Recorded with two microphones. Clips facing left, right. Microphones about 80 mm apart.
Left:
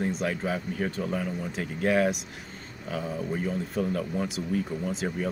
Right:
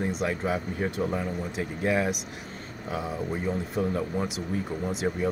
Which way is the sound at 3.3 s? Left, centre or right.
Right.